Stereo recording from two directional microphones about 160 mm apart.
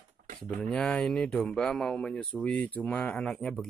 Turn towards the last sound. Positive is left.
turn(degrees=5)  # may be behind; listen again after turning